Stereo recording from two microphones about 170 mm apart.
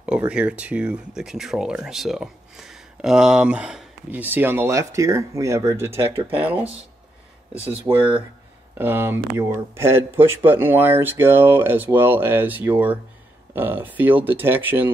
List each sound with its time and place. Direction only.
0.0 s speech: 5° right (ahead or behind)
7.5 s speech: 35° right (ahead or behind)
8.7 s speech: 10° right (ahead or behind)